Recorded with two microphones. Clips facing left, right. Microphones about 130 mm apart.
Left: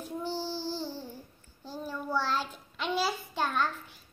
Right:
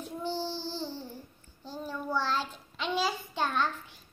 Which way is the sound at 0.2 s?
10° left (ahead or behind).